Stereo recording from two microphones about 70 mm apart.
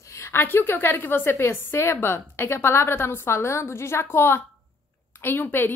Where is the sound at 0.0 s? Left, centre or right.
Left.